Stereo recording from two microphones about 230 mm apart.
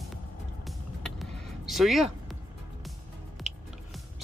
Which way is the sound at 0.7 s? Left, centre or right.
Centre.